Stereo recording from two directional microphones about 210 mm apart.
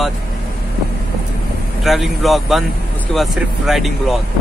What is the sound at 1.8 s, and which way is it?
Speech, centre (ahead or behind).